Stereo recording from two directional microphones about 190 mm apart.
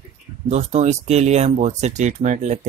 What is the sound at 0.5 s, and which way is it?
Speech, 35° right (ahead or behind).